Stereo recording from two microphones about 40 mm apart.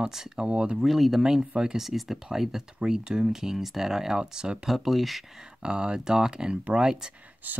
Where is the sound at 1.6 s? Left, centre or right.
Centre.